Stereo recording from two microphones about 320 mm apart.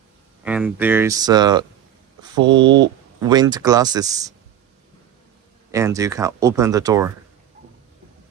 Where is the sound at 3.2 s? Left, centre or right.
Centre.